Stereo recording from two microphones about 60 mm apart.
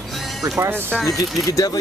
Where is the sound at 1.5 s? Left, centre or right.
Left.